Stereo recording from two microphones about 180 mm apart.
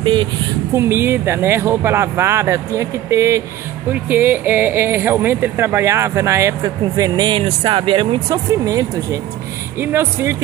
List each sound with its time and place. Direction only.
0.0 s speech: 25° right (ahead or behind)
0.7 s speech: 15° right (ahead or behind)